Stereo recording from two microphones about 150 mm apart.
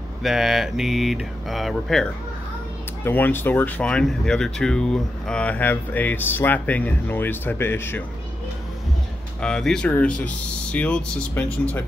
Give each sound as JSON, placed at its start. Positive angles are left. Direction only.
{"t": 0.2, "sound": "speech", "side_deg": 0}
{"t": 3.0, "sound": "speech", "side_deg": 15}
{"t": 9.4, "sound": "speech", "side_deg": 5}